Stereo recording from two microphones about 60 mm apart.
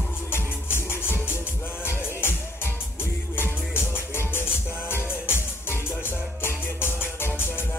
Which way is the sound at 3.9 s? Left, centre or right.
Left.